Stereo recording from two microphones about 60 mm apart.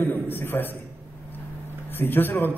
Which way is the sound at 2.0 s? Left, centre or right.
Left.